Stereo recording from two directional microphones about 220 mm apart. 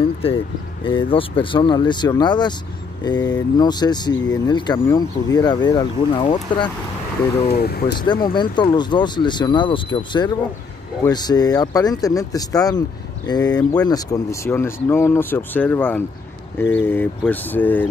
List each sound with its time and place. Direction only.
0.8 s speech: 25° left (ahead or behind)
7.5 s speech: 45° left (ahead or behind)
7.9 s speech: 20° left (ahead or behind)